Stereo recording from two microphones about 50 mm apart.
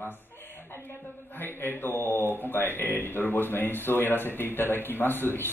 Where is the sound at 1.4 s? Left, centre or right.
Left.